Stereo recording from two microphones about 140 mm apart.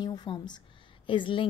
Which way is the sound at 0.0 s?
30° left (ahead or behind).